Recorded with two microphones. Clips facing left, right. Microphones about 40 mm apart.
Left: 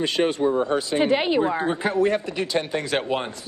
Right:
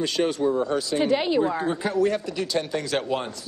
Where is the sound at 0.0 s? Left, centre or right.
Left.